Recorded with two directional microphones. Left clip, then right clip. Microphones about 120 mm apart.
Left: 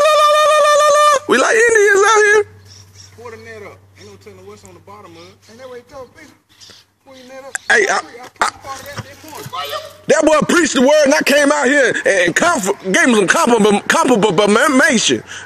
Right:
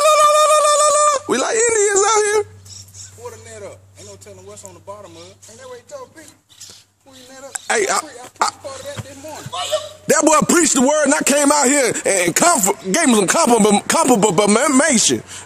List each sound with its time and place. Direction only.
0.0 s wind instrument: 15° right (ahead or behind)
1.0 s a sound: centre (ahead or behind)
1.7 s whimper: centre (ahead or behind)
3.3 s a sound: 25° right (ahead or behind)
7.5 s speech: 15° right (ahead or behind)
10.0 s a man's voice: 25° right (ahead or behind)
12.9 s speech: 10° right (ahead or behind)